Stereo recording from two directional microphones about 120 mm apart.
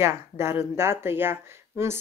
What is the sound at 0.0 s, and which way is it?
Speech, 20° right (ahead or behind).